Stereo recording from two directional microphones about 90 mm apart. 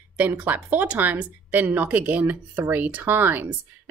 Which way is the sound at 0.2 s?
20° right (ahead or behind).